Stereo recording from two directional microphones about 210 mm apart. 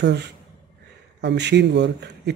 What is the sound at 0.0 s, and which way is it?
Speech, 55° right (ahead or behind).